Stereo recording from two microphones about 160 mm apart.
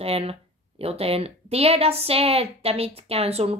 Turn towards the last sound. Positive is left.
turn(degrees=-40)  # may be behind; listen again after turning